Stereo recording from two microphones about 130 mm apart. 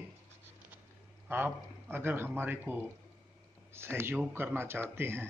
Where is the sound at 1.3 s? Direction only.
15° right (ahead or behind).